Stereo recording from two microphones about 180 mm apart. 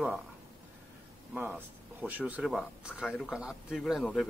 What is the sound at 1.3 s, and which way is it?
Speech, 10° right (ahead or behind).